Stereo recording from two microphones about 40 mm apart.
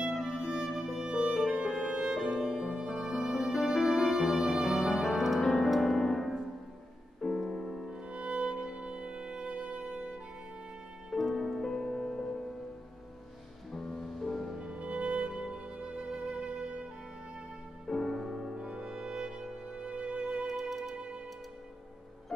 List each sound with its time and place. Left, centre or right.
0.0 s music: centre
1.4 s music: right
2.0 s music: centre
5.4 s music: centre
8.1 s music: right
11.1 s music: centre
13.7 s music: centre
14.6 s music: right
17.8 s music: centre
18.6 s music: centre
19.8 s music: right